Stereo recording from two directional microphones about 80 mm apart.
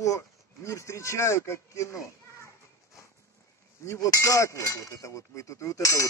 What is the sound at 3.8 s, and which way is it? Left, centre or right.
Speech, left.